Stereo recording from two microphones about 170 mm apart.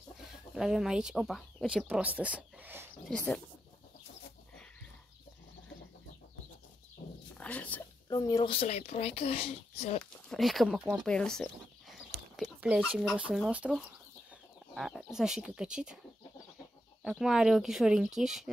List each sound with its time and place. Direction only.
0.6 s speech: 5° right (ahead or behind)
3.1 s speech: 10° left (ahead or behind)
7.3 s a sound: 10° left (ahead or behind)
8.1 s speech: 20° left (ahead or behind)
8.5 s a child's voice: 35° left (ahead or behind)
10.3 s speech: centre (ahead or behind)
12.4 s speech: 10° right (ahead or behind)
17.0 s speech: 5° right (ahead or behind)